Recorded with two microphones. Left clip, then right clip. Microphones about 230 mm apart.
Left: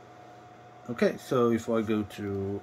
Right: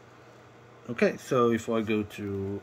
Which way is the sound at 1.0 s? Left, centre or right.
Centre.